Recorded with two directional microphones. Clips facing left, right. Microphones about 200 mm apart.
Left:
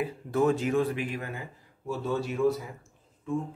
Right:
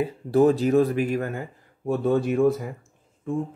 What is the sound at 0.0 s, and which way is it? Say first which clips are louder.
Speech: right 7 dB; 35° right (ahead or behind).